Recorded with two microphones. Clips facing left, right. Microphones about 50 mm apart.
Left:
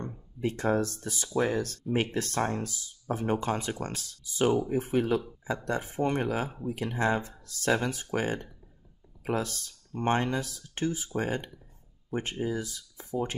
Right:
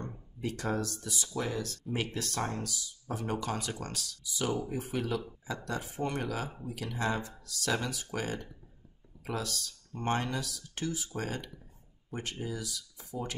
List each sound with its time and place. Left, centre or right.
0.4 s speech: left